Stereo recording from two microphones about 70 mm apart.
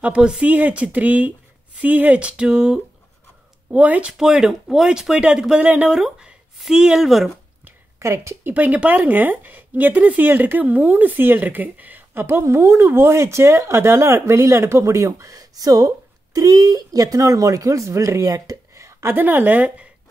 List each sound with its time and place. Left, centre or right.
0.0 s speech: centre
4.1 s speech: centre
5.9 s speech: centre
8.0 s speech: right
8.5 s a woman's voice: right
18.9 s a sound: right
19.1 s speech: right